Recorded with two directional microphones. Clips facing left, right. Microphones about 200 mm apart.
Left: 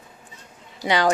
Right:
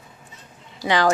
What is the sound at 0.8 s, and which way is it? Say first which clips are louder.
Speech: right 1 dB; 15° left (ahead or behind).